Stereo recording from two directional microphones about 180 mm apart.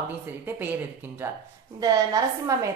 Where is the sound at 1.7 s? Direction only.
20° right (ahead or behind).